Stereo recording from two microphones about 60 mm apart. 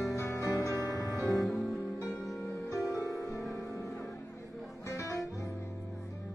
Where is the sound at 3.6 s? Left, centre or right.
Left.